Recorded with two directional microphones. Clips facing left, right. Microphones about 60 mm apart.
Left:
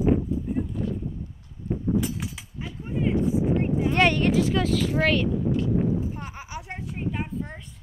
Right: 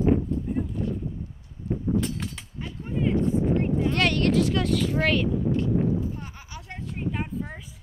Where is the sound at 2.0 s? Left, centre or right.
Centre.